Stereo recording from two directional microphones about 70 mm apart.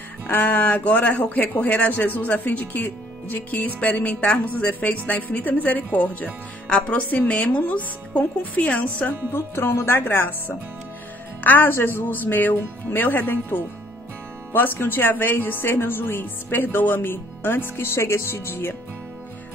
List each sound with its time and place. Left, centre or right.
0.3 s speech: left
9.6 s speech: left